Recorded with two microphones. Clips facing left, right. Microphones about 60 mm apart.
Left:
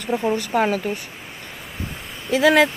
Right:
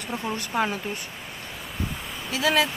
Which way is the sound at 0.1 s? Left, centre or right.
Centre.